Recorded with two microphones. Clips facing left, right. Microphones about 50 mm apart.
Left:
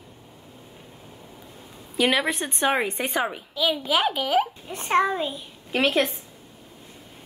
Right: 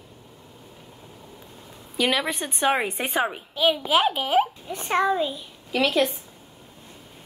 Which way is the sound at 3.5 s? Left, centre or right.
Right.